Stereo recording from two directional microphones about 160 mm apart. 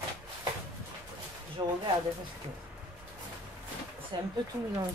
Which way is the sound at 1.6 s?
20° right (ahead or behind).